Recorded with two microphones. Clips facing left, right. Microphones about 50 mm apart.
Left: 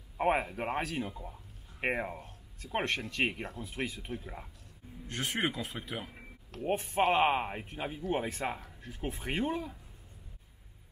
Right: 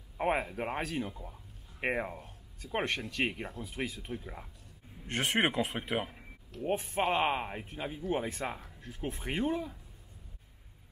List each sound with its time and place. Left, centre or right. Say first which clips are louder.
0.2 s speech: left 2 dB; centre
5.0 s speech: right 4 dB; right
5.8 s speech: right 6 dB; right
6.6 s speech: left 2 dB; centre